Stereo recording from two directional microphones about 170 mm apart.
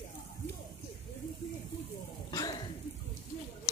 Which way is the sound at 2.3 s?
25° left (ahead or behind).